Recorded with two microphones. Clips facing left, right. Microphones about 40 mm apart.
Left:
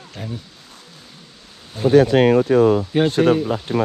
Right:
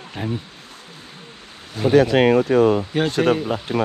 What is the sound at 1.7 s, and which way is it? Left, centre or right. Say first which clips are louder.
Speech: left 2 dB; right.